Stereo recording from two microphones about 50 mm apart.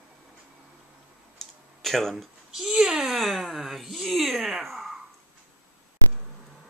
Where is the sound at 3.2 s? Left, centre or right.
Centre.